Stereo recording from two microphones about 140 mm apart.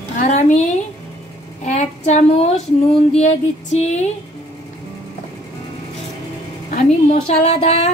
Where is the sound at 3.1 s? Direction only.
50° left (ahead or behind).